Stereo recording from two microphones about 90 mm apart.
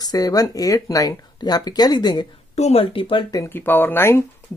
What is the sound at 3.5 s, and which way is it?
Speech, 20° left (ahead or behind).